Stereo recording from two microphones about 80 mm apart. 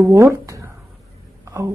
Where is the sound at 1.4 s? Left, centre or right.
Right.